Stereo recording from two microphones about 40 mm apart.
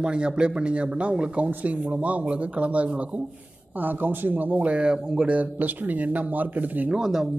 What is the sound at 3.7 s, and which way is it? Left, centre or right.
Speech, right.